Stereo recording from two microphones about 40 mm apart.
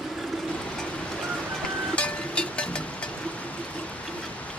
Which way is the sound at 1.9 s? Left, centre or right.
Left.